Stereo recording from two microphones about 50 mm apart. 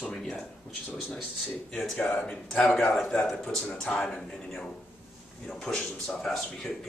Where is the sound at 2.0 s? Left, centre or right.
Left.